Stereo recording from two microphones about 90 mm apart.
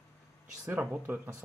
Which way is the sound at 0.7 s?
20° right (ahead or behind).